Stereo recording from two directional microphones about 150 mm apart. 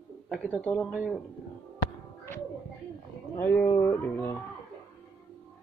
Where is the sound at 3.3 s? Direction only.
15° left (ahead or behind).